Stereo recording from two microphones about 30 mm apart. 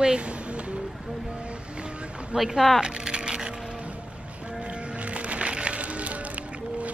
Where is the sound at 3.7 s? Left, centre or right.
Right.